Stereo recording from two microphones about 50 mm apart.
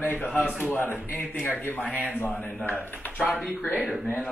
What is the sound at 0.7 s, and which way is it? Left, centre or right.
Speech, left.